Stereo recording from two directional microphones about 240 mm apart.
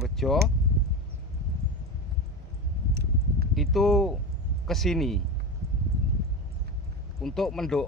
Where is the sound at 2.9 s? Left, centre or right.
Right.